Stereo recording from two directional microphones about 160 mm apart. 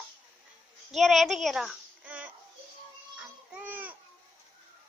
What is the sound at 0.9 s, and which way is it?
A child's voice, centre (ahead or behind).